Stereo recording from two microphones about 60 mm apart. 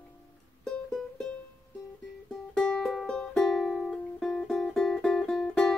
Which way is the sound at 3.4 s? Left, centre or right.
Centre.